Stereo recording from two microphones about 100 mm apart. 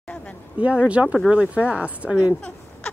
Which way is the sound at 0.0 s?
15° left (ahead or behind).